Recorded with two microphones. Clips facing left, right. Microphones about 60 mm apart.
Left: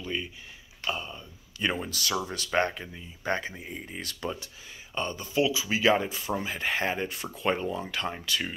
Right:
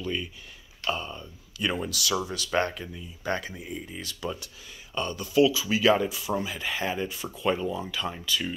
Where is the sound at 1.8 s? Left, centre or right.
Left.